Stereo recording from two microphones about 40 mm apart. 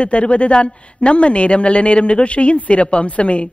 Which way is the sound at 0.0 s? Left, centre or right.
Left.